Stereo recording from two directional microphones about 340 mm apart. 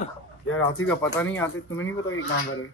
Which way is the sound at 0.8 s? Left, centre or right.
Centre.